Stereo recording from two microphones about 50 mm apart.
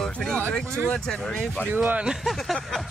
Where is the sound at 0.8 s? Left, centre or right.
Centre.